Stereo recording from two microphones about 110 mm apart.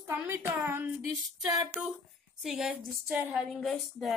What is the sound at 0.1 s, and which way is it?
Speech, 20° right (ahead or behind).